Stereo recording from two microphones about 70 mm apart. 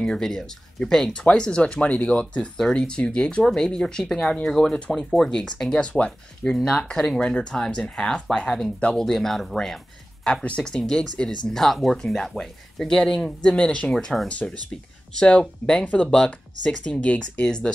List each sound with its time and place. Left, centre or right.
0.0 s speech: centre